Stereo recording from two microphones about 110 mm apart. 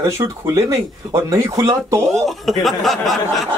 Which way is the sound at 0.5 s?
25° right (ahead or behind).